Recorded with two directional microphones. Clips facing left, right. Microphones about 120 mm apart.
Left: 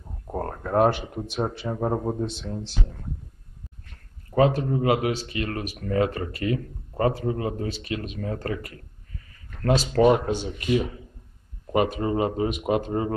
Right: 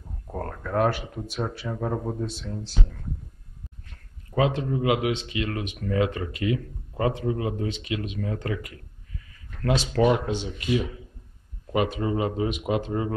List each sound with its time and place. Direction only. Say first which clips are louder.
0.3 s speech: left 3 dB; 30° left (ahead or behind)
4.4 s speech: left 3 dB; 40° left (ahead or behind)